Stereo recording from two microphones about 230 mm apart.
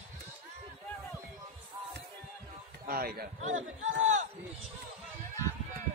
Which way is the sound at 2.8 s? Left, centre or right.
Right.